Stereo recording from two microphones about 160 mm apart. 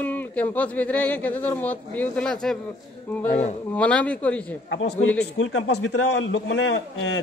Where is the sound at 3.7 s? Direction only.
10° left (ahead or behind).